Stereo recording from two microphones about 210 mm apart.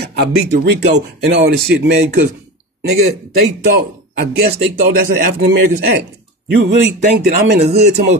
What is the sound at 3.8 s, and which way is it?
Speech, 45° right (ahead or behind).